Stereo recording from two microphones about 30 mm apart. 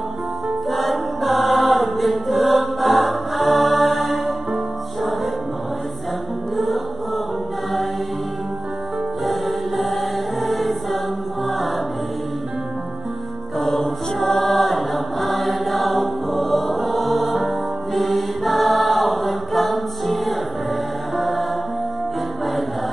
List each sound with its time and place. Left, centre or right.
0.7 s chant: centre
6.5 s music: centre
9.2 s music: centre
11.4 s choir: centre
13.6 s choir: centre
17.4 s music: centre